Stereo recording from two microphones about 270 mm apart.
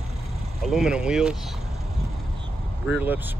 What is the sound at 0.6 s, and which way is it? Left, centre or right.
Speech, centre.